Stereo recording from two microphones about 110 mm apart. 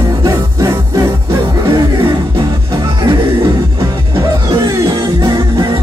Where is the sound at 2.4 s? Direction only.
35° right (ahead or behind).